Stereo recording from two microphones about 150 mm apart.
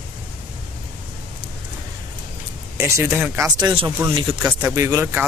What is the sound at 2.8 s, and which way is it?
Speech, 15° right (ahead or behind).